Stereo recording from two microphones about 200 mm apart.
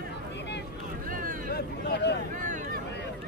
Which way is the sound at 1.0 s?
45° right (ahead or behind).